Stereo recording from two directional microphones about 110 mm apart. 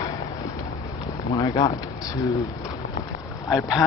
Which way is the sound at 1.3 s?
35° left (ahead or behind).